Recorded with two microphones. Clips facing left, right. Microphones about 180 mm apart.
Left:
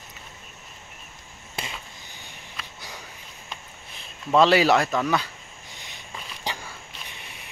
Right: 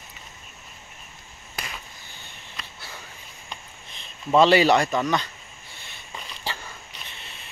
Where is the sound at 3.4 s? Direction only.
5° left (ahead or behind).